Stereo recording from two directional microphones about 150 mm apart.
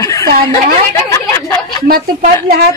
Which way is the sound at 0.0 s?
20° left (ahead or behind).